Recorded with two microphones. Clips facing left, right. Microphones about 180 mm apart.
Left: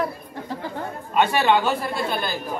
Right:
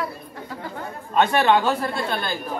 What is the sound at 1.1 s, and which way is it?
Speech, 5° left (ahead or behind).